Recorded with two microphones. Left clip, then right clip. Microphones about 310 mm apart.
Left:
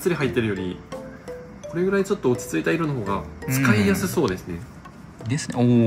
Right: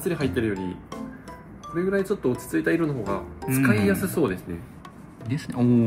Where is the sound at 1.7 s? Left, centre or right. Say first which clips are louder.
Left 2 dB; centre.